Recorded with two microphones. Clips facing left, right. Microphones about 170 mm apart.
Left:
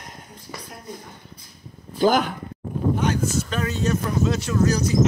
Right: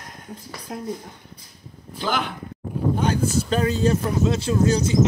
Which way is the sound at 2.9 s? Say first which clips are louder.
Right 2 dB; 30° right (ahead or behind).